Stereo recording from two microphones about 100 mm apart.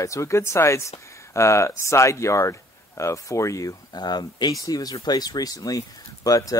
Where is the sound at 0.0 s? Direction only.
30° left (ahead or behind).